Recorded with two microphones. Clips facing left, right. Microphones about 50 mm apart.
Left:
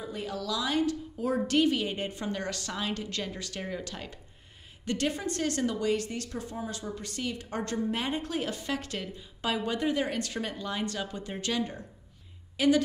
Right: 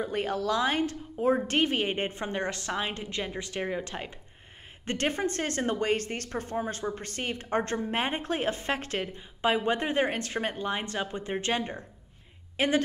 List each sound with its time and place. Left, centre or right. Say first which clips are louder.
0.0 s a woman's voice: right 6 dB; right